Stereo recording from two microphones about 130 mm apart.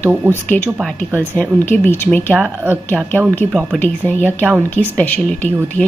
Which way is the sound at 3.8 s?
15° left (ahead or behind).